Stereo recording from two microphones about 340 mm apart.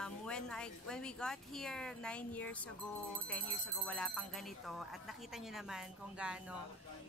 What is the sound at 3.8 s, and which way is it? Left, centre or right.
Speech, centre.